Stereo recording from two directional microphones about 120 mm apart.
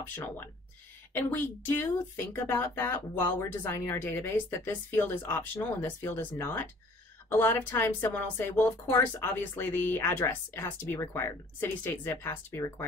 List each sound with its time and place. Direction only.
0.1 s speech: 20° left (ahead or behind)